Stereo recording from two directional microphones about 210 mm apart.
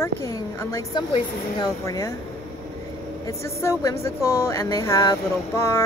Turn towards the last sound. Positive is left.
turn(degrees=10)  # may be behind; listen again after turning